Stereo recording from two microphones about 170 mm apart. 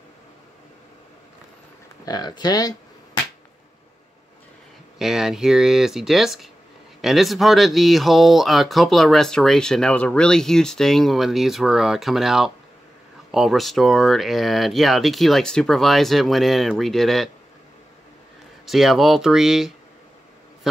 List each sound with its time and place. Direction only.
2.0 s speech: 25° left (ahead or behind)
4.9 s speech: 5° right (ahead or behind)
18.7 s speech: centre (ahead or behind)